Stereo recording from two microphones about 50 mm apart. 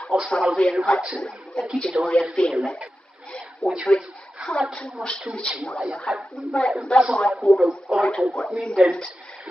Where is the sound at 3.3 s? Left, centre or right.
Centre.